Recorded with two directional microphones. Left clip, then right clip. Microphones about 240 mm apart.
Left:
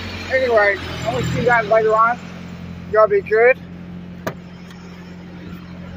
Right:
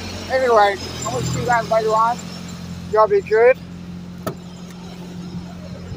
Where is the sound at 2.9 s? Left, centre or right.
Centre.